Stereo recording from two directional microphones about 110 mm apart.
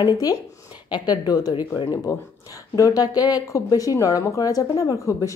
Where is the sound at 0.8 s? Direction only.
40° left (ahead or behind).